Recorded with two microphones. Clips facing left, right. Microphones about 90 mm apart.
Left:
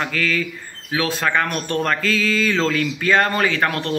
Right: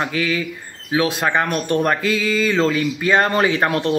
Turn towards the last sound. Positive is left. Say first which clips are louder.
# right 3 dB
turn(degrees=-20)  # may be behind; listen again after turning